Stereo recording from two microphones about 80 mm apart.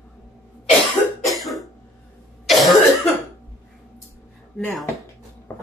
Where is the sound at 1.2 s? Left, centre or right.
Centre.